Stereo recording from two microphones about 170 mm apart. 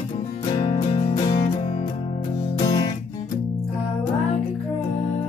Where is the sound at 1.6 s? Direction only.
45° left (ahead or behind).